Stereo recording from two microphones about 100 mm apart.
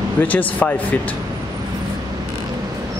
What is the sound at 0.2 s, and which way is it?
Speech, 15° left (ahead or behind).